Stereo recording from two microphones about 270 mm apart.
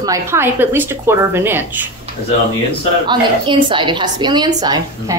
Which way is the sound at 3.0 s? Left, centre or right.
Centre.